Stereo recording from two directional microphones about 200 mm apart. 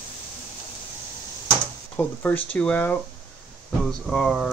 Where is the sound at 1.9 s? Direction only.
5° left (ahead or behind).